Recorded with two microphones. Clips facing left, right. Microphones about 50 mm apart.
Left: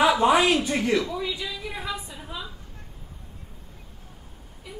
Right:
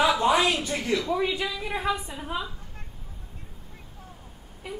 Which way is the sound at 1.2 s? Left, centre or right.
Right.